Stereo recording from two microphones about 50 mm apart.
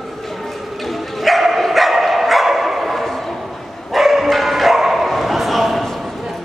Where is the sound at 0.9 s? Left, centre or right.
Centre.